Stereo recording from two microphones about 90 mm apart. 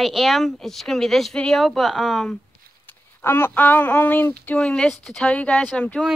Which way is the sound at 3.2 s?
25° left (ahead or behind).